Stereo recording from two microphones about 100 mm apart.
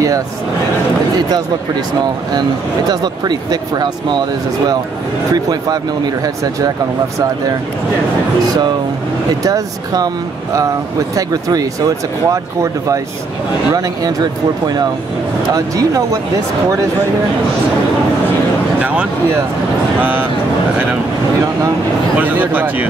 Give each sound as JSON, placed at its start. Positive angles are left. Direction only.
{"t": 2.9, "sound": "speech", "side_deg": -45}
{"t": 5.3, "sound": "speech", "side_deg": -40}
{"t": 9.3, "sound": "speech", "side_deg": -35}
{"t": 13.7, "sound": "speech", "side_deg": -40}
{"t": 18.8, "sound": "speech", "side_deg": -15}
{"t": 22.1, "sound": "speech", "side_deg": -15}